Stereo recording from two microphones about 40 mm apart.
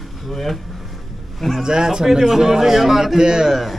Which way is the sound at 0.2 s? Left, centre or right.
Centre.